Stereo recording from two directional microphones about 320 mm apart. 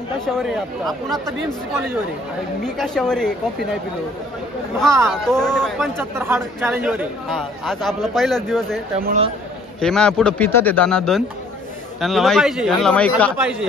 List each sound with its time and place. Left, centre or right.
0.2 s speech: centre
2.6 s speech: centre
5.0 s speech: centre
9.0 s speech: right
9.8 s speech: centre